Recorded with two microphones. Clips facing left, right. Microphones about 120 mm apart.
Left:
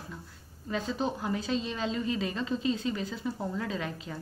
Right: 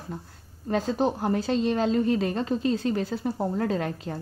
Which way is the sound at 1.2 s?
65° right (ahead or behind).